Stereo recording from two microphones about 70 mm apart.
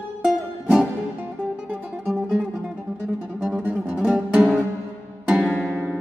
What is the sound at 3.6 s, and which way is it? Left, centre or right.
Music, right.